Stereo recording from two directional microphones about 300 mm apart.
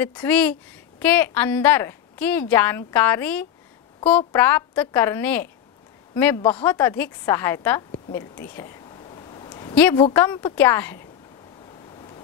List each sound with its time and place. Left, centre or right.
0.0 s a woman's voice: centre
11.9 s waves: centre